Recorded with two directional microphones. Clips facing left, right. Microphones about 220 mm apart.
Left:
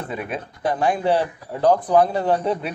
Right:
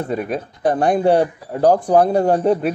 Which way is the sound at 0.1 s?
40° right (ahead or behind).